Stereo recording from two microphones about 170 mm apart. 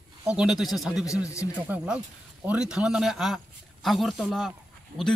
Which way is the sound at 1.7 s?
5° right (ahead or behind).